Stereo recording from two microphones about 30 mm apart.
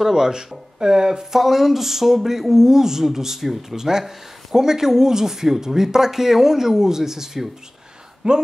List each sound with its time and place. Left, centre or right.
0.1 s speech: right
1.3 s speech: centre
8.2 s speech: right